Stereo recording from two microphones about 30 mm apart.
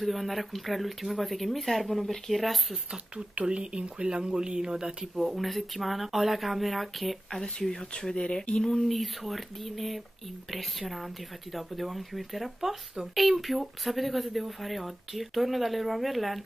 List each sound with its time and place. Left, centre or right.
0.0 s speech: centre
3.4 s speech: right
5.0 s speech: centre
5.3 s speech: centre
8.5 s speech: left
8.8 s speech: centre